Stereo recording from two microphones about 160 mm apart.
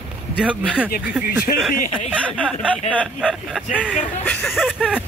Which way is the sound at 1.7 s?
55° left (ahead or behind).